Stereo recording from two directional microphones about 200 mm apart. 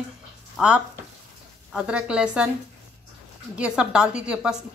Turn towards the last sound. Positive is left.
turn(degrees=-5)  # may be behind; listen again after turning